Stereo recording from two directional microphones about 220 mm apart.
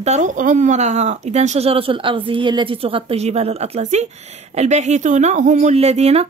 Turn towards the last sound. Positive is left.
turn(degrees=-30)  # may be behind; listen again after turning